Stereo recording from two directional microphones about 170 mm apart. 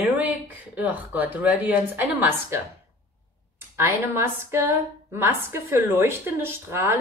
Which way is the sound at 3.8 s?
15° right (ahead or behind).